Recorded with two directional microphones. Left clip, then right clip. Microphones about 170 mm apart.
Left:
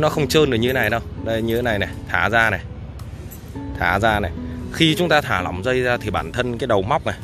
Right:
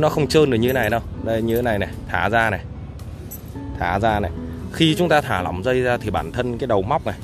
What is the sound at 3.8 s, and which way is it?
Speech, 10° right (ahead or behind).